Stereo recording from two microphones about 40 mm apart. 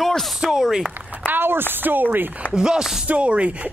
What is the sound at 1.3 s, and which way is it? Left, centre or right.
Speech, right.